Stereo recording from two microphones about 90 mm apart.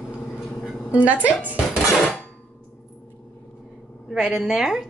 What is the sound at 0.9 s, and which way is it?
Speech, 15° right (ahead or behind).